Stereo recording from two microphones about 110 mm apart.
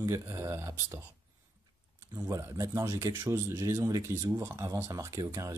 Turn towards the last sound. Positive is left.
turn(degrees=-30)  # may be behind; listen again after turning